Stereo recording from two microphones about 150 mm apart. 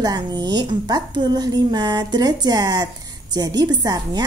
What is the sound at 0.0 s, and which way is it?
A woman's voice, 25° right (ahead or behind).